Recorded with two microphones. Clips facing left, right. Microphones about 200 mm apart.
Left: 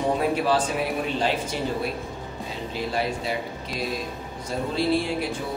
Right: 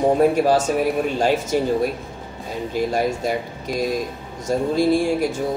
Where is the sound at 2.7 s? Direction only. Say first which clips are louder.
Right 6 dB; 45° right (ahead or behind).